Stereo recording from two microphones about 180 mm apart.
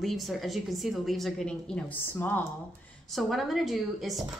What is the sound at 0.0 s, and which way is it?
A woman's voice, centre (ahead or behind).